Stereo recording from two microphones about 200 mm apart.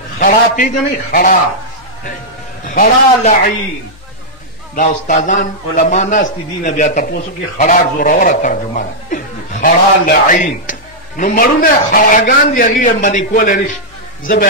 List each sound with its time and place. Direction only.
0.2 s a man's voice: 45° left (ahead or behind)
2.6 s a man's voice: 45° left (ahead or behind)
4.7 s a man's voice: 40° left (ahead or behind)